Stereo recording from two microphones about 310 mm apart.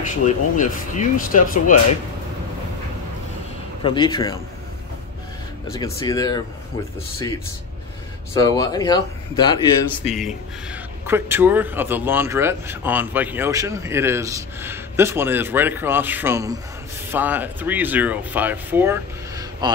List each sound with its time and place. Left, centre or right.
0.6 s speech: left
3.8 s speech: centre
5.9 s speech: centre
8.4 s speech: centre
10.0 s speech: centre